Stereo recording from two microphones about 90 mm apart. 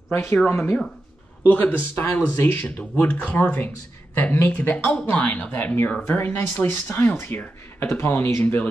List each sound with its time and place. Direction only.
0.1 s speech: 25° left (ahead or behind)